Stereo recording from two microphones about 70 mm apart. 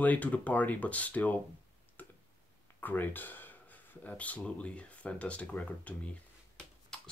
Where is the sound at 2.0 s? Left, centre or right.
Left.